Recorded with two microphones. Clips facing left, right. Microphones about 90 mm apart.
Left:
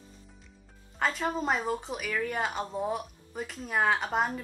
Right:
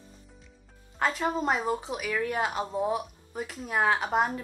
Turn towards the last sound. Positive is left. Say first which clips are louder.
# right 2 dB
turn(degrees=0)  # may be behind; listen again after turning